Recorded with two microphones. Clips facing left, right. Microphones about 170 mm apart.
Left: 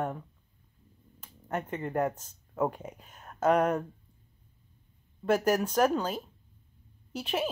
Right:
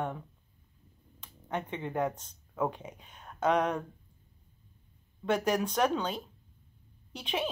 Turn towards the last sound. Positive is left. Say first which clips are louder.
# left 3 dB
turn(degrees=5)  # may be behind; listen again after turning